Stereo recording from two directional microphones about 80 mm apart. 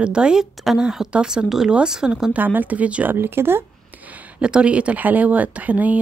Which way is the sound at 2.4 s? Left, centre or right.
Right.